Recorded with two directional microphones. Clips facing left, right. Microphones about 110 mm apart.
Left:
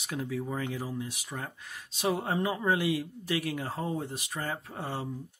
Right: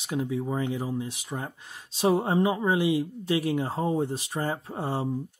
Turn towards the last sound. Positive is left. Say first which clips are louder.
# right 6 dB
turn(degrees=-25)  # may be behind; listen again after turning